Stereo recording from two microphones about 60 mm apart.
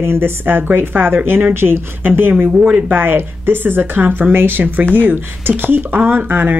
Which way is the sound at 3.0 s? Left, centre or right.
Right.